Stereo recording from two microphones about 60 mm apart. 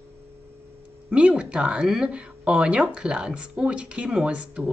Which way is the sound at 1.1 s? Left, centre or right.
Centre.